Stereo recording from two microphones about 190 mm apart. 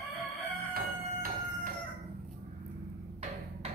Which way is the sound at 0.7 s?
45° right (ahead or behind).